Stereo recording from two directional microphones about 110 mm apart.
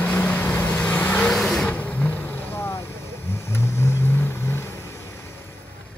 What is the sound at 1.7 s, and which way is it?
Vehicle, 15° left (ahead or behind).